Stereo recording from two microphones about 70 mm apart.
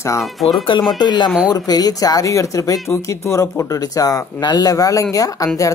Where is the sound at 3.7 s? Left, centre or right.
Left.